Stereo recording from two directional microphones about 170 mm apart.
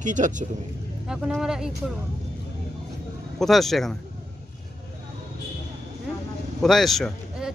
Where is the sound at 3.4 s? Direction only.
Centre (ahead or behind).